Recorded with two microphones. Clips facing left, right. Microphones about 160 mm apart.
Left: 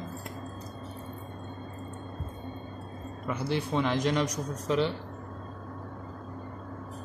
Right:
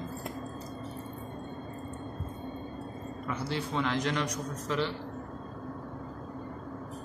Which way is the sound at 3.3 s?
15° left (ahead or behind).